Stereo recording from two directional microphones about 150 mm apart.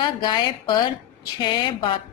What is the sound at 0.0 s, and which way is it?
A woman's voice, 30° left (ahead or behind).